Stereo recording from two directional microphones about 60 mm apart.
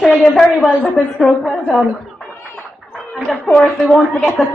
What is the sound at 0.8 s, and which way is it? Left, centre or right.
Speech, centre.